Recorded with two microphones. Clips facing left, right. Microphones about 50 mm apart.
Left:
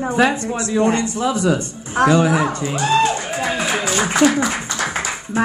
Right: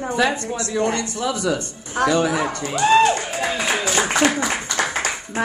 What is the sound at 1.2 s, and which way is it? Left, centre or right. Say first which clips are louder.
Speech: left 4 dB; left.